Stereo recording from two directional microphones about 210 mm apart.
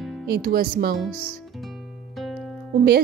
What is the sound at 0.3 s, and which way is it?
Speech, 45° right (ahead or behind).